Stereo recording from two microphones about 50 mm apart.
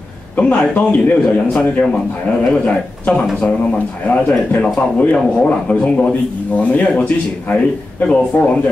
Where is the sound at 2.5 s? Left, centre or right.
Left.